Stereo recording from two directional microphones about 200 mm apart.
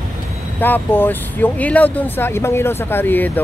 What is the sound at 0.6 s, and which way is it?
Speech, 10° left (ahead or behind).